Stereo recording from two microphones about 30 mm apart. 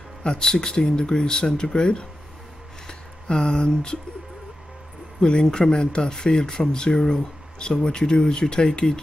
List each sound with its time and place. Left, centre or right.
0.4 s speech: left
5.2 s speech: left